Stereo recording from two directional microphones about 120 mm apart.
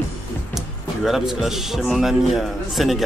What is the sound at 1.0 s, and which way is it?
Speech, centre (ahead or behind).